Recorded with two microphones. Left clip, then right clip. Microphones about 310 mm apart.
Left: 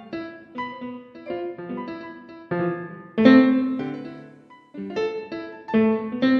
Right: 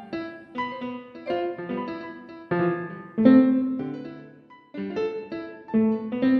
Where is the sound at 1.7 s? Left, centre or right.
Centre.